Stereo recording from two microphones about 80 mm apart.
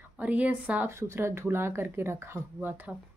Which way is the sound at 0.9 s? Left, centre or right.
Right.